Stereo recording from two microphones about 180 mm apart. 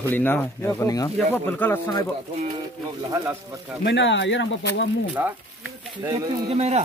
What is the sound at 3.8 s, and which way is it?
Speech, 80° left.